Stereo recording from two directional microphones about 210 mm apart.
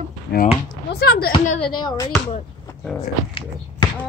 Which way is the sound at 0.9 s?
55° left (ahead or behind).